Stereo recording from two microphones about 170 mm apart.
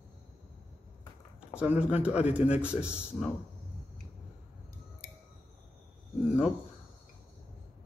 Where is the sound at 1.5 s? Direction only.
10° right (ahead or behind).